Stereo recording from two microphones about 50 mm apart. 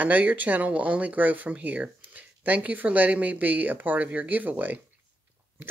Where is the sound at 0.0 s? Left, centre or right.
Right.